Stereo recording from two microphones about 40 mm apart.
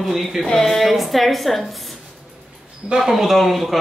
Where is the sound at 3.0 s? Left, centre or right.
Centre.